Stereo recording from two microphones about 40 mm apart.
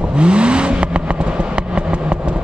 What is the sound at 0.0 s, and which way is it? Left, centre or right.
Vehicle, right.